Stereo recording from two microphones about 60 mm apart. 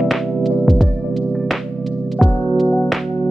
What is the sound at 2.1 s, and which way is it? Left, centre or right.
Music, centre.